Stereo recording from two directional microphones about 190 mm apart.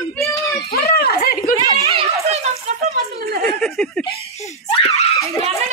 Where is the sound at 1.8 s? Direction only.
35° right (ahead or behind).